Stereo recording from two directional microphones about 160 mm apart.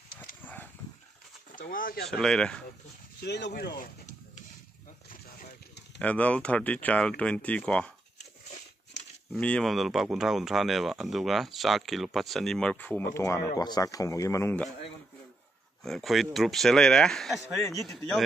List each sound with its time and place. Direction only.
1.5 s speech: 60° left (ahead or behind)
2.0 s speech: 5° left (ahead or behind)
3.2 s a sound: 90° left; by 4.5 s 55° left (ahead or behind)
5.9 s speech: 10° left (ahead or behind)
9.3 s speech: 5° left (ahead or behind)
15.8 s speech: centre (ahead or behind)
17.6 s speech: 20° left (ahead or behind)